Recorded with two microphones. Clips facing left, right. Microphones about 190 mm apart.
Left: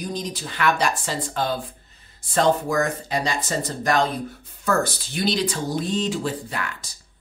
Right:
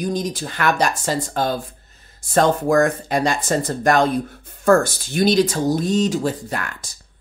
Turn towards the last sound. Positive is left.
turn(degrees=-45)  # may be behind; listen again after turning